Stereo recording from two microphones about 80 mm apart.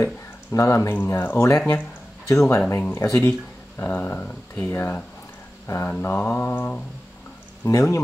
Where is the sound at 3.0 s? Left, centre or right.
Left.